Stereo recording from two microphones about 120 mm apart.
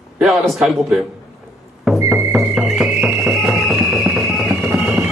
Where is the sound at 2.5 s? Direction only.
5° right (ahead or behind).